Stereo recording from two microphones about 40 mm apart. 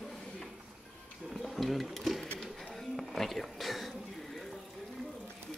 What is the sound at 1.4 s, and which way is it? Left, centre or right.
Sewing machine, centre.